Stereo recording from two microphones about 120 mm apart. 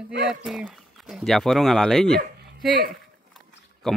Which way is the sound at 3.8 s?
Centre (ahead or behind).